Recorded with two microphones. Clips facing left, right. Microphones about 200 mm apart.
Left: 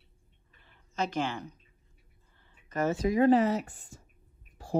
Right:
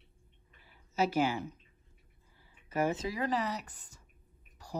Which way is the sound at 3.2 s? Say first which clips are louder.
Left 11 dB; 40° left (ahead or behind).